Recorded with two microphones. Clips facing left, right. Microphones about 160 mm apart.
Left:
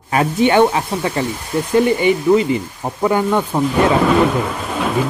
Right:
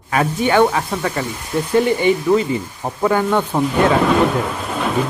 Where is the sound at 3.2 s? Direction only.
5° left (ahead or behind).